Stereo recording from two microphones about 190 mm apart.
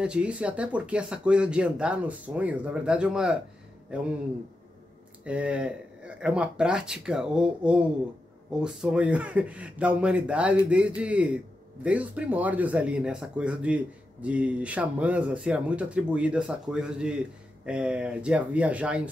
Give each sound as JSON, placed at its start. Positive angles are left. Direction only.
{"t": 0.0, "sound": "speech", "side_deg": -5}
{"t": 5.2, "sound": "speech", "side_deg": -5}